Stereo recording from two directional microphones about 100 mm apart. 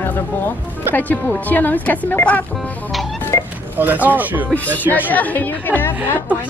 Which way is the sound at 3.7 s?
15° right (ahead or behind).